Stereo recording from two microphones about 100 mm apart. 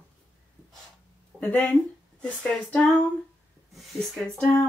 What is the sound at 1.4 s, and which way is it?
Speech, 20° left (ahead or behind).